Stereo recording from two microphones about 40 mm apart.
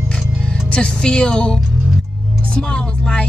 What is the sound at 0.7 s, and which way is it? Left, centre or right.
Speech, left.